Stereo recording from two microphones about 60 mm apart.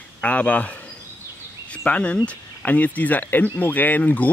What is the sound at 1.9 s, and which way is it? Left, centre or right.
Speech, left.